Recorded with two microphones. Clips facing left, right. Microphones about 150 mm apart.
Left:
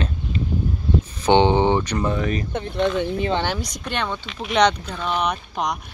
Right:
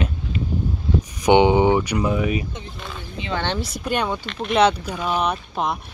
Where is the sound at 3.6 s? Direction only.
5° right (ahead or behind).